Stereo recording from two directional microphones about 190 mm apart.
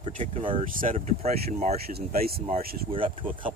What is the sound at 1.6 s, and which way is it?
Speech, 50° right (ahead or behind).